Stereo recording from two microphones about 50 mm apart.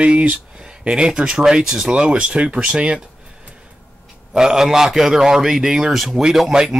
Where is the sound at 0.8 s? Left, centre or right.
Centre.